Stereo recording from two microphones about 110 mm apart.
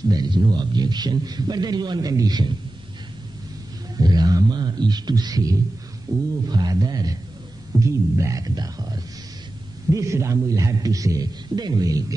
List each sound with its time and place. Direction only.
0.1 s a man's voice: 40° right (ahead or behind)
3.9 s a sound: 40° right (ahead or behind)
6.1 s a man's voice: 30° right (ahead or behind)